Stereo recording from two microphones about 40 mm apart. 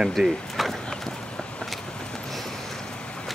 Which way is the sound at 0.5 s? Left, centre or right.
Centre.